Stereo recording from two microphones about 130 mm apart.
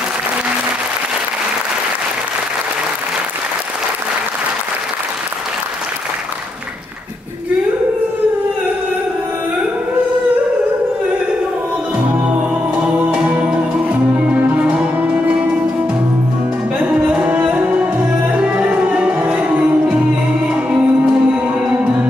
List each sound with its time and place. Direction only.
12.4 s music: 10° right (ahead or behind)
17.1 s music: 10° right (ahead or behind)
21.3 s music: 10° right (ahead or behind)